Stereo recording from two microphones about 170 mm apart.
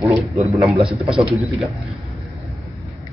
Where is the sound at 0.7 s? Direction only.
35° right (ahead or behind).